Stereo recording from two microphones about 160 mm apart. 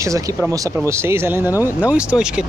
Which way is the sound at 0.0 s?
20° right (ahead or behind).